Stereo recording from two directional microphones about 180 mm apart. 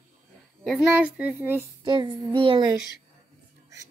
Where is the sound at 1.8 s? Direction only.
25° right (ahead or behind).